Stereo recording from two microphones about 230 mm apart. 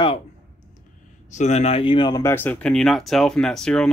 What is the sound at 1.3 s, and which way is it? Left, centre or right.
Speech, left.